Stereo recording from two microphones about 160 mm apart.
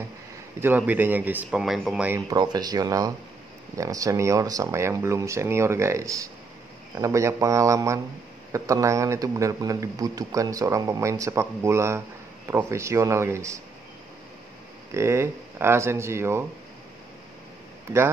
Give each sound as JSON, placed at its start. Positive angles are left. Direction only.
{"t": 0.6, "sound": "speech", "side_deg": -10}
{"t": 2.0, "sound": "speech", "side_deg": -20}
{"t": 14.9, "sound": "speech", "side_deg": -15}